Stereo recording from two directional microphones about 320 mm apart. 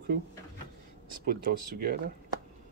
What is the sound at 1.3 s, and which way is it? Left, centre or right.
Speech, right.